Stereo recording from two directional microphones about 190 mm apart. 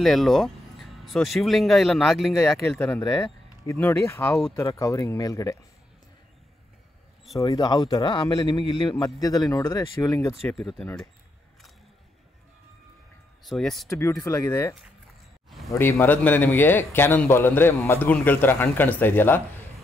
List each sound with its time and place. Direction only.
0.0 s speech: centre (ahead or behind)
3.0 s a man's voice: 20° left (ahead or behind)
7.4 s a man's voice: 20° left (ahead or behind)
10.8 s speech: 5° left (ahead or behind)
13.4 s speech: centre (ahead or behind)
13.8 s a man's voice: 15° left (ahead or behind)